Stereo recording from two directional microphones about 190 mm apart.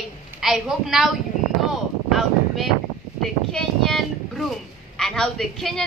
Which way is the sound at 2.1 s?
Centre (ahead or behind).